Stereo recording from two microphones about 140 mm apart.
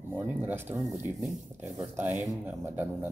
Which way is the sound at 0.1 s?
15° right (ahead or behind).